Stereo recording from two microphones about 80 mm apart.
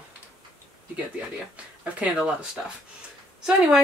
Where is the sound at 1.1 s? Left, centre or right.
Centre.